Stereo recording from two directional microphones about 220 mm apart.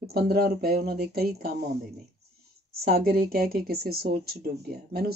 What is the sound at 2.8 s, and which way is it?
Speech, 45° right (ahead or behind).